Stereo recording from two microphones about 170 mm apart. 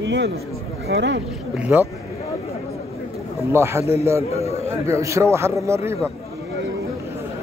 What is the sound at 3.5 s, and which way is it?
A man's voice, 15° right (ahead or behind).